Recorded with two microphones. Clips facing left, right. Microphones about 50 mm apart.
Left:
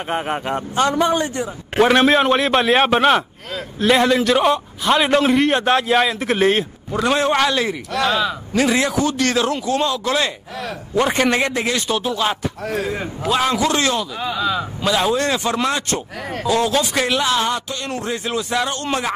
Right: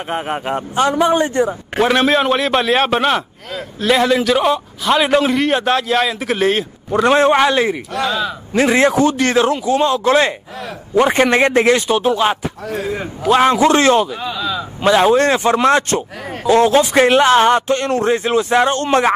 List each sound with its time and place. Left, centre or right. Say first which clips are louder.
0.1 s a man's voice: right 1 dB; centre
0.5 s a man's voice: right 3 dB; centre
1.8 s a man's voice: even; centre
7.1 s a man's voice: right 5 dB; right
11.7 s a man's voice: right 6 dB; right
12.7 s a man's voice: right 2 dB; centre
13.4 s speech: right 6 dB; right